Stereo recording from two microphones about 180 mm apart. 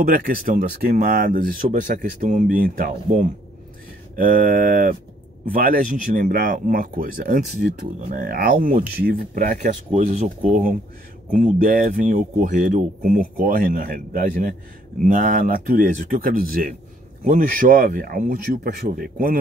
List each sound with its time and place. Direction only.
0.0 s speech: 55° right (ahead or behind)